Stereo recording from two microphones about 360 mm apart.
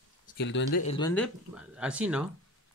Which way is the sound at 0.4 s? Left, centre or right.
Left.